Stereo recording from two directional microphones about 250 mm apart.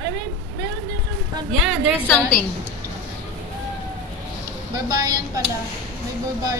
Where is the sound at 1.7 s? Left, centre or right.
Centre.